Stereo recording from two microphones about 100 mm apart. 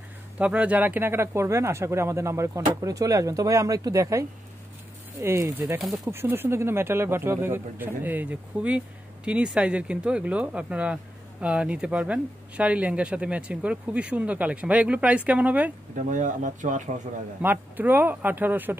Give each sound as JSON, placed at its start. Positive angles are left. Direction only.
{"t": 0.4, "sound": "speech", "side_deg": -15}
{"t": 17.4, "sound": "speech", "side_deg": -20}